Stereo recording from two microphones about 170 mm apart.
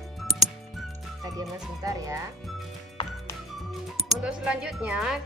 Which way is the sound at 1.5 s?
20° right (ahead or behind).